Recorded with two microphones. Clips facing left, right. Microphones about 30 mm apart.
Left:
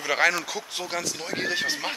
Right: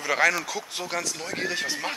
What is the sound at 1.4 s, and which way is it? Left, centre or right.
Speech, centre.